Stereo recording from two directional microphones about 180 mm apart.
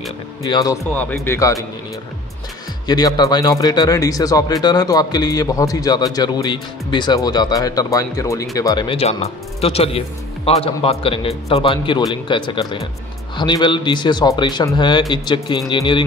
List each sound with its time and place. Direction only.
0.4 s speech: 20° left (ahead or behind)
2.9 s speech: 20° left (ahead or behind)